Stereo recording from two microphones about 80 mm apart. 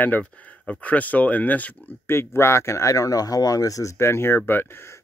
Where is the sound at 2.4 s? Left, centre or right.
Left.